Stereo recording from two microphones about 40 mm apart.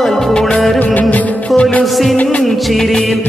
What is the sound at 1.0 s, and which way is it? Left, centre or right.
Music, left.